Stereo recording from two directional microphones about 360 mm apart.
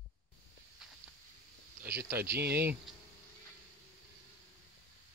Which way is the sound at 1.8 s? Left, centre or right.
Centre.